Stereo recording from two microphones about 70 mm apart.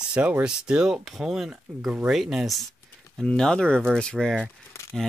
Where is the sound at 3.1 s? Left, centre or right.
Centre.